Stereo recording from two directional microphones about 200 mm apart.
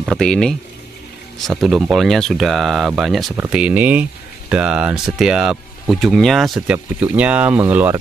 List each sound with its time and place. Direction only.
0.0 s speech: centre (ahead or behind)